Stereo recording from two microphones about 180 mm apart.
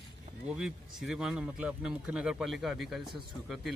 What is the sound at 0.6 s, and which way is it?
A man's voice, 5° right (ahead or behind).